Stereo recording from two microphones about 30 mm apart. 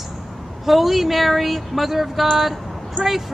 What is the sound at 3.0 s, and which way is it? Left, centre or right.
Speech, left.